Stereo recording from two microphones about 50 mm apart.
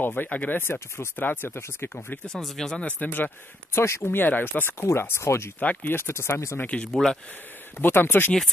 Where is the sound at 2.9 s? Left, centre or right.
Left.